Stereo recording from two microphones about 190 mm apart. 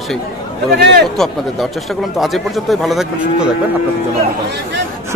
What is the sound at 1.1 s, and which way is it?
Speech, centre (ahead or behind).